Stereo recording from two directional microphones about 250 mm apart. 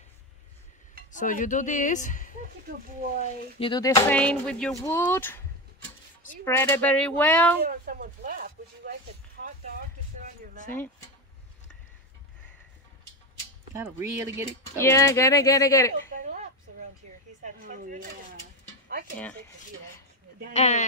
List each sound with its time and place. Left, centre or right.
1.1 s speech: left
2.6 s speech: right
3.5 s speech: centre
6.4 s speech: centre
7.6 s speech: right
13.7 s speech: centre
14.8 s speech: centre
17.4 s speech: right
20.5 s speech: left